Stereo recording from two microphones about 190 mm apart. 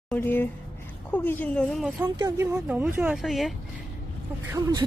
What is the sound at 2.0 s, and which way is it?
Speech, 20° right (ahead or behind).